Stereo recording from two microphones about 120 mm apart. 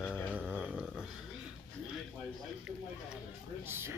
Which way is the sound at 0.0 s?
10° left (ahead or behind).